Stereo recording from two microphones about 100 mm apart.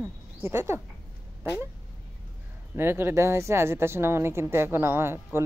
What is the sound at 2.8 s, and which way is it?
A woman's voice, 25° right (ahead or behind).